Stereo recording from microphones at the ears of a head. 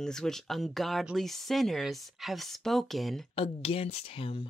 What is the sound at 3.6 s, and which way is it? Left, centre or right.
Speech, left.